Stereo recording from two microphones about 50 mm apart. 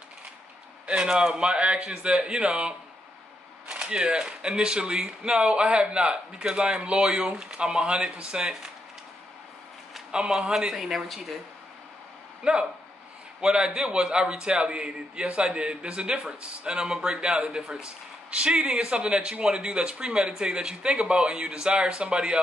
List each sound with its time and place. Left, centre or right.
0.8 s speech: centre
3.8 s speech: centre
10.1 s a woman's voice: centre
12.4 s a man's voice: centre